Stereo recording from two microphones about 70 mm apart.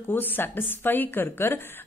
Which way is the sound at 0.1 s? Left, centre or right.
Left.